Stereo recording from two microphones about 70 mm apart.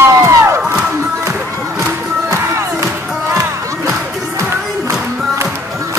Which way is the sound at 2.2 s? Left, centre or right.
Right.